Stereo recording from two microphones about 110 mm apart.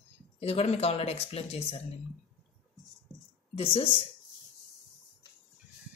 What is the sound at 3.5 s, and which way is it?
Speech, 65° left (ahead or behind).